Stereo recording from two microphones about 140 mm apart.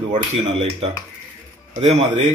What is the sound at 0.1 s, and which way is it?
A man's voice, 50° right (ahead or behind).